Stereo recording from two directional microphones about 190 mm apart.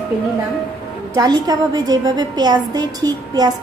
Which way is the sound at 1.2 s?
20° right (ahead or behind).